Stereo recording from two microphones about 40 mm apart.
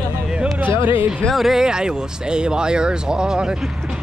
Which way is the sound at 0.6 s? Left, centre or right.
Right.